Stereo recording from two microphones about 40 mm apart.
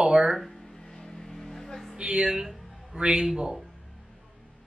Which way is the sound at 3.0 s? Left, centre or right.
Centre.